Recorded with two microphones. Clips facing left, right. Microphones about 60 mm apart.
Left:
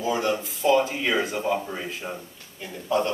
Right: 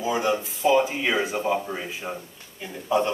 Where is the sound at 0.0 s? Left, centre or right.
Centre.